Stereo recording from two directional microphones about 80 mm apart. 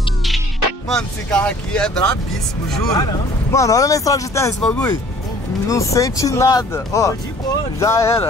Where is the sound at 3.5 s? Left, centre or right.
Left.